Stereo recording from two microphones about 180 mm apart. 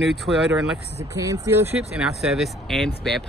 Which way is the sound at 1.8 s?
5° right (ahead or behind).